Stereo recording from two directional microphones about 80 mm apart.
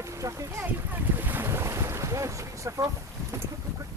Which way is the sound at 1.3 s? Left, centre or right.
Right.